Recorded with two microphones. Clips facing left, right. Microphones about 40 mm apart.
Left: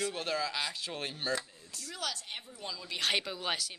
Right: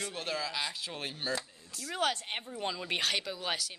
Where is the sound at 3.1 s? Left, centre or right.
Centre.